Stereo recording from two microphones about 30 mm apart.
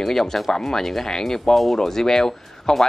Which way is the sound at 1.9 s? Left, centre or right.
Centre.